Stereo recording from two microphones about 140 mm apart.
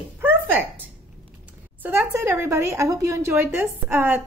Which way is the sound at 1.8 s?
15° right (ahead or behind).